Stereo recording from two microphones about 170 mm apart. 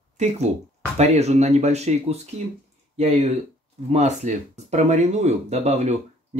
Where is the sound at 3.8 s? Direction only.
40° right (ahead or behind).